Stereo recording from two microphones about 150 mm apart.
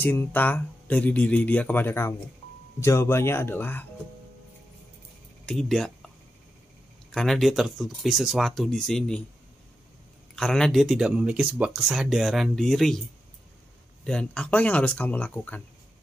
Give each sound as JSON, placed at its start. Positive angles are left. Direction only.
{"t": 0.0, "sound": "speech", "side_deg": 15}
{"t": 5.4, "sound": "a sound", "side_deg": 5}
{"t": 7.1, "sound": "speech", "side_deg": 0}
{"t": 10.3, "sound": "speech", "side_deg": 5}
{"t": 14.0, "sound": "speech", "side_deg": 5}